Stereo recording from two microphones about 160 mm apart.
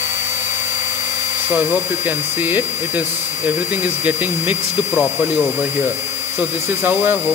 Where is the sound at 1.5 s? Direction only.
10° right (ahead or behind).